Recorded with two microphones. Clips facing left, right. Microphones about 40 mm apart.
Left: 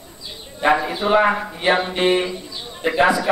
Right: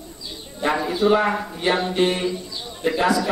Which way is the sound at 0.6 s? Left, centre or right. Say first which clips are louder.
Left 2 dB; left.